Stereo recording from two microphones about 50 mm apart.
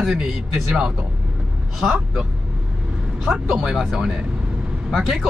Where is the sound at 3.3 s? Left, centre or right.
Centre.